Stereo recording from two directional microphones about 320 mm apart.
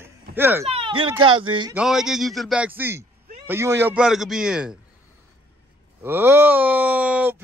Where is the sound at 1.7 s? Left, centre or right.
Centre.